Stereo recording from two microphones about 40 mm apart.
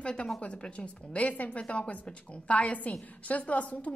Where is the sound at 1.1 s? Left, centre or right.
Left.